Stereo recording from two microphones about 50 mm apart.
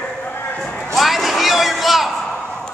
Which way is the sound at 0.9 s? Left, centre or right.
Centre.